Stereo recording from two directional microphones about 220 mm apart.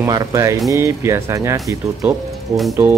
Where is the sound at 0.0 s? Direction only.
15° right (ahead or behind).